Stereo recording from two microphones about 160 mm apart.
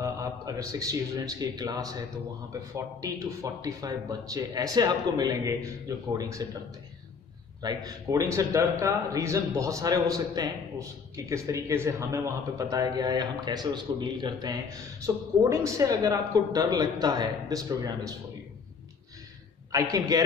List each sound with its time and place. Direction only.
0.0 s a man's voice: 20° right (ahead or behind)
7.6 s a man's voice: 20° right (ahead or behind)
19.7 s a man's voice: 25° right (ahead or behind)